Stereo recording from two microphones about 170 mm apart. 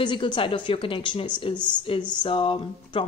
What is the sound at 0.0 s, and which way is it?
Speech, 25° left (ahead or behind).